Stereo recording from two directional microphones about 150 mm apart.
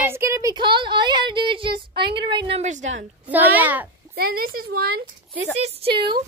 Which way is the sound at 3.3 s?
10° right (ahead or behind).